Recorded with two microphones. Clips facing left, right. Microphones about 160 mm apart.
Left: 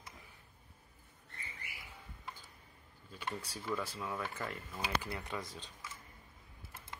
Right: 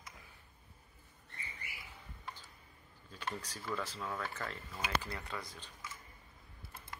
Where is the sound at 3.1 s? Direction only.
5° left (ahead or behind).